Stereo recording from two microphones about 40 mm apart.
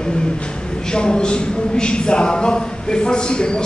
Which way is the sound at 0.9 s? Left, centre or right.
Left.